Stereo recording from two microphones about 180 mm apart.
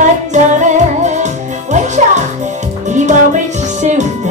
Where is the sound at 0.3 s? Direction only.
40° right (ahead or behind).